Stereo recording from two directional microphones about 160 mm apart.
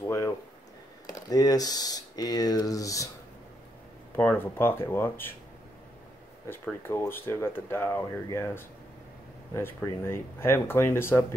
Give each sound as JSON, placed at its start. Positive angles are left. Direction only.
{"t": 0.0, "sound": "a sound", "side_deg": 20}
{"t": 1.0, "sound": "speech", "side_deg": 25}
{"t": 4.2, "sound": "speech", "side_deg": 10}
{"t": 6.5, "sound": "speech", "side_deg": 15}